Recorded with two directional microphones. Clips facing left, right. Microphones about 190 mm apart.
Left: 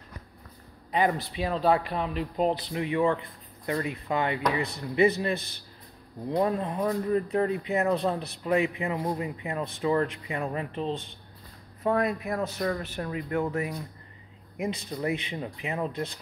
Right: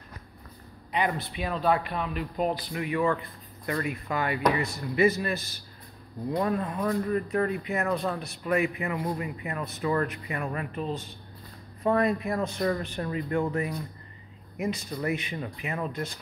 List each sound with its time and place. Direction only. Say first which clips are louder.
0.9 s speech: left 3 dB; 40° left (ahead or behind); by 4.6 s 20° left (ahead or behind)
6.3 s speech: left 2 dB; 20° left (ahead or behind)
10.4 s speech: left 2 dB; 25° left (ahead or behind)
11.8 s speech: right 2 dB; 5° left (ahead or behind); by 15.9 s 20° left (ahead or behind)